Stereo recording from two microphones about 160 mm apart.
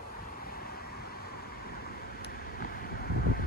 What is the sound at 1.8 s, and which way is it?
Vehicle, 75° left (ahead or behind).